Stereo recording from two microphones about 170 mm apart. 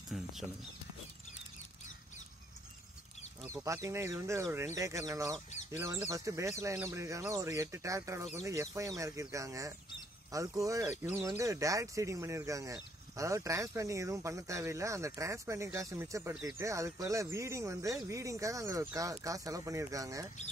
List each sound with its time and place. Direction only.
0.1 s speech: centre (ahead or behind)
3.6 s speech: 15° right (ahead or behind)